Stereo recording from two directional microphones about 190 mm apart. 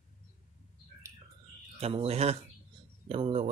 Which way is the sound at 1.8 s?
30° right (ahead or behind).